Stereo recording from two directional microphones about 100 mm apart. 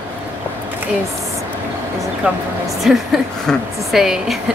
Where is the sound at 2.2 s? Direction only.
10° right (ahead or behind).